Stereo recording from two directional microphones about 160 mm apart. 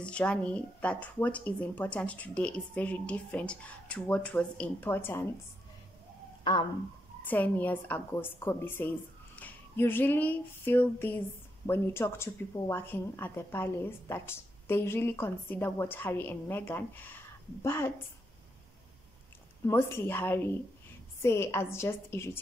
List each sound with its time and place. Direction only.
0.0 s a woman's voice: 5° left (ahead or behind)
7.2 s a woman's voice: 10° left (ahead or behind)
19.6 s a woman's voice: 15° left (ahead or behind)